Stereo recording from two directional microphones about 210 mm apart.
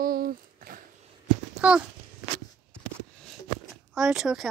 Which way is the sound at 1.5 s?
5° right (ahead or behind).